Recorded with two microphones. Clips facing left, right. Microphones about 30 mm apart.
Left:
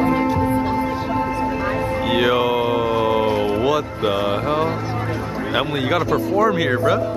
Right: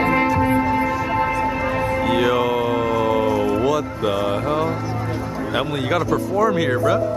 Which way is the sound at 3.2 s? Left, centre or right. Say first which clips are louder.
Even; left.